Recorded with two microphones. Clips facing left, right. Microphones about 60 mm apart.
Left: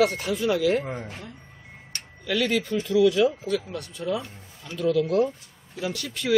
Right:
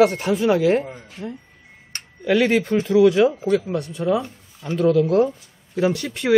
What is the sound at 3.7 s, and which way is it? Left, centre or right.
Speech, right.